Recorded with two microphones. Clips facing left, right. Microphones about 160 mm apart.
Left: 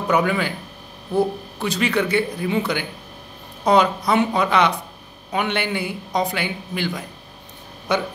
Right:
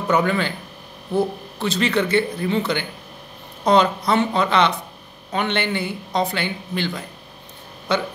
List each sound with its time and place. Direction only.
0.1 s speech: 10° left (ahead or behind)